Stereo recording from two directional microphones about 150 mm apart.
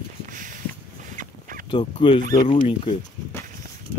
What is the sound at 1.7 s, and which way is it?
Speech, 30° left (ahead or behind).